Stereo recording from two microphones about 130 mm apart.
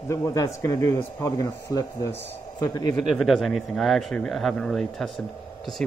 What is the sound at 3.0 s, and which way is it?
Speech, centre (ahead or behind).